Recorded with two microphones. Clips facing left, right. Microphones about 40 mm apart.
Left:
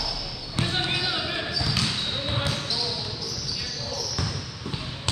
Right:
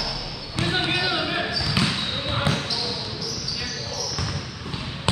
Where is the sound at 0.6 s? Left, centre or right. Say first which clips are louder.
Right 4 dB; centre.